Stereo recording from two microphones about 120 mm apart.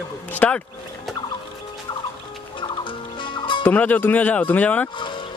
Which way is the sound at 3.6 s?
15° left (ahead or behind).